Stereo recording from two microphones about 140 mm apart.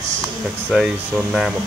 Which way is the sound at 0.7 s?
5° right (ahead or behind).